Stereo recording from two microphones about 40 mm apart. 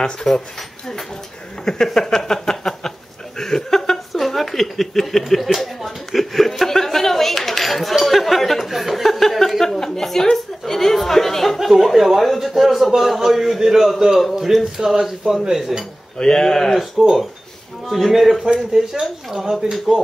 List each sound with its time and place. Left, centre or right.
0.0 s speech: centre
0.6 s speech: centre
2.0 s a sound: centre
14.3 s speech: centre
16.2 s speech: centre
17.8 s speech: centre